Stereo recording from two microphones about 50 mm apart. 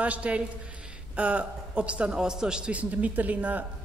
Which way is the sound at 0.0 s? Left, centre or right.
Right.